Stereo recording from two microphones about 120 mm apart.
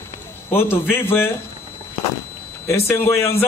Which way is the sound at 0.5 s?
20° left (ahead or behind).